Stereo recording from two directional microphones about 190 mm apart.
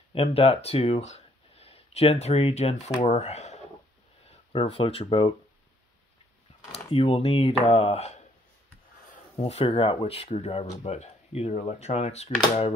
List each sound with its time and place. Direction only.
0.1 s speech: 30° left (ahead or behind)
6.7 s speech: 30° left (ahead or behind)
9.4 s speech: 35° left (ahead or behind)